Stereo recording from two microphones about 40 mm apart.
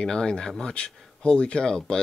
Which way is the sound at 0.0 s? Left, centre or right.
Centre.